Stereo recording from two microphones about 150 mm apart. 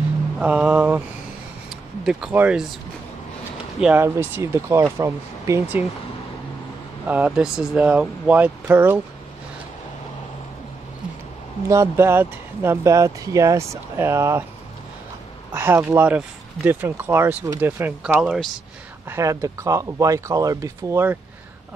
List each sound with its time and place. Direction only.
0.4 s speech: 10° right (ahead or behind)
2.0 s speech: 5° right (ahead or behind)
3.8 s speech: 15° right (ahead or behind)
7.1 s speech: 10° right (ahead or behind)
11.6 s speech: 20° right (ahead or behind)
15.5 s speech: 15° right (ahead or behind)
19.0 s speech: 20° right (ahead or behind)